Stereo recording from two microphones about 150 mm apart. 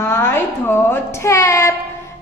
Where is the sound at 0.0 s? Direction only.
15° left (ahead or behind).